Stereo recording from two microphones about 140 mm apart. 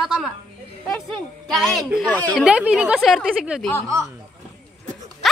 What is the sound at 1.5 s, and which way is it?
Speech, centre (ahead or behind).